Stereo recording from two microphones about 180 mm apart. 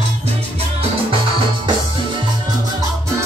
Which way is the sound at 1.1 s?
30° right (ahead or behind).